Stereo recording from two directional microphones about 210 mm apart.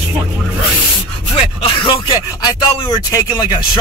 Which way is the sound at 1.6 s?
25° left (ahead or behind).